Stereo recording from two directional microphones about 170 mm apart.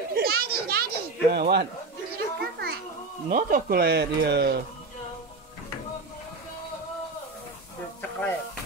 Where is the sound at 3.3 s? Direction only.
60° right (ahead or behind).